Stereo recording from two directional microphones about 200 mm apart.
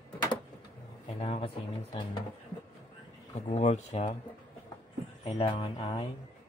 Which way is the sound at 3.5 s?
35° left (ahead or behind).